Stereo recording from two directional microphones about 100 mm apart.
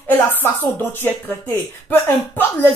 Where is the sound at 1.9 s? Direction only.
20° left (ahead or behind).